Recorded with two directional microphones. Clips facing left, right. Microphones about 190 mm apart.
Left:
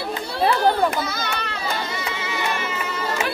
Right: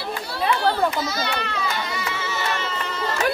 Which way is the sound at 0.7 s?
50° left (ahead or behind).